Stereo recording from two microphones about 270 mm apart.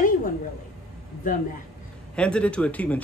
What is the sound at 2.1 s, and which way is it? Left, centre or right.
Speech, centre.